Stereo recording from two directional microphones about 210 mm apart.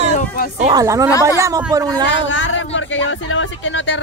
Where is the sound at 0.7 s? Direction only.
15° right (ahead or behind).